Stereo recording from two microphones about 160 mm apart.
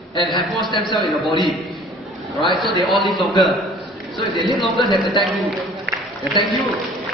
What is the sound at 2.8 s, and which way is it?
Speech, centre (ahead or behind).